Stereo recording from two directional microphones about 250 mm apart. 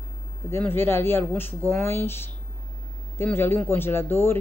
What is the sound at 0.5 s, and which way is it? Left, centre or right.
Speech, centre.